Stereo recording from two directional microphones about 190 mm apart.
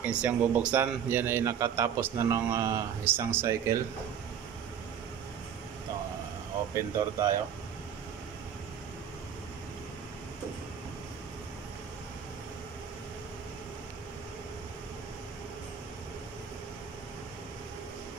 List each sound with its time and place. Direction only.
0.0 s a man's voice: 5° right (ahead or behind)
6.7 s a man's voice: 15° right (ahead or behind)